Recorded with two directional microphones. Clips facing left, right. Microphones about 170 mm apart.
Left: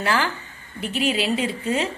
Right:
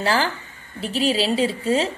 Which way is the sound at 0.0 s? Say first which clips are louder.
Right 2 dB; 30° right (ahead or behind).